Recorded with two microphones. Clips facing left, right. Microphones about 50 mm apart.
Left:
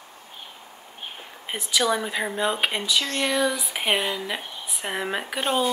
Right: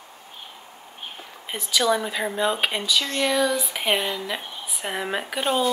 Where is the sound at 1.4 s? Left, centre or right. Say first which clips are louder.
Right 1 dB; centre.